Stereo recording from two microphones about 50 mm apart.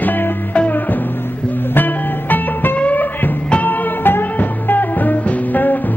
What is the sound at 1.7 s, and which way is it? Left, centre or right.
Music, left.